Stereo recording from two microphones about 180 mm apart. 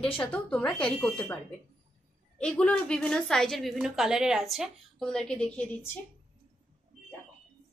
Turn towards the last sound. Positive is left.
turn(degrees=5)  # may be behind; listen again after turning